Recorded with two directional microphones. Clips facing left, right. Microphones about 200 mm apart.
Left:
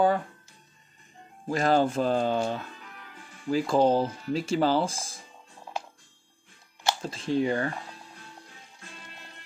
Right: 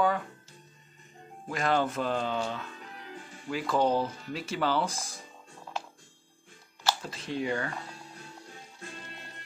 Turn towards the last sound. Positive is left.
turn(degrees=35)  # may be behind; listen again after turning